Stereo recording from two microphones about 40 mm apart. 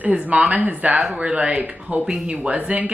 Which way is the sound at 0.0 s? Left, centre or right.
Right.